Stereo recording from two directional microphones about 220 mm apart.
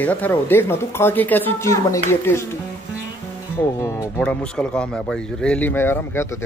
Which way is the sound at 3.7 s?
15° left (ahead or behind).